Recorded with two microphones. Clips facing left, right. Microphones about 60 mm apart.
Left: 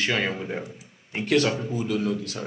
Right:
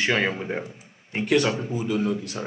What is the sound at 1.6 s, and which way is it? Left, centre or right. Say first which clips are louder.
Speech: right 1 dB; right.